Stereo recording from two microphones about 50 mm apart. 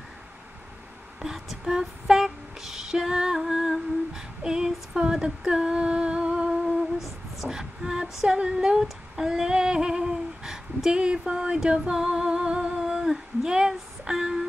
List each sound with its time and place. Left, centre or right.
1.2 s female singing: centre
4.9 s a sound: centre
7.3 s female singing: centre